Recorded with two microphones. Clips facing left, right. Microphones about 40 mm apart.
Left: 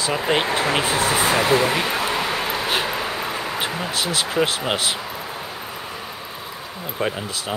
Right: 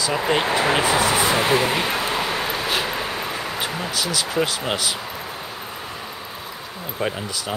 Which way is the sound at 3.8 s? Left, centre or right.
Left.